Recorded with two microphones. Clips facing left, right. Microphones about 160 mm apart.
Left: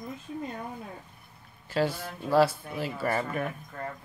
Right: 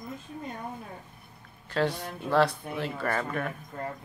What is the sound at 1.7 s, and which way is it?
Speech, 5° left (ahead or behind).